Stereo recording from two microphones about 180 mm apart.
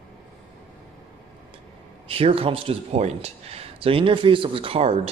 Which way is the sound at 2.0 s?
30° right (ahead or behind).